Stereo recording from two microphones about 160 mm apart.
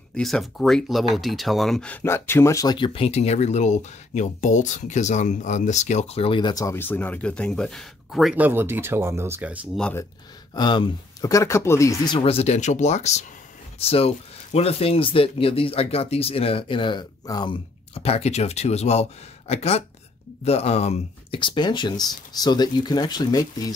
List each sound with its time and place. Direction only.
0.1 s speech: centre (ahead or behind)
10.5 s speech: 30° left (ahead or behind)
12.2 s speech: 35° left (ahead or behind)
17.9 s speech: 40° left (ahead or behind)